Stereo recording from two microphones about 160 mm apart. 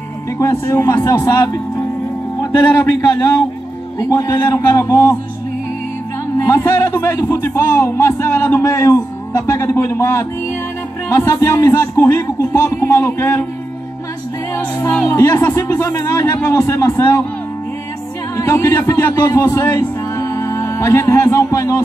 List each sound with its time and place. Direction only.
0.4 s speech: 15° left (ahead or behind)
4.0 s a man's voice: 20° left (ahead or behind)
6.4 s speech: 20° left (ahead or behind)
14.8 s speech: 15° left (ahead or behind)
18.3 s a man's voice: 15° left (ahead or behind)